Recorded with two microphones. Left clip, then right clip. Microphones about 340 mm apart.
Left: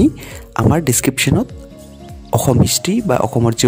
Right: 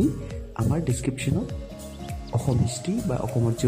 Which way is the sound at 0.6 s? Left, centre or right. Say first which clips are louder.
Left 14 dB; left.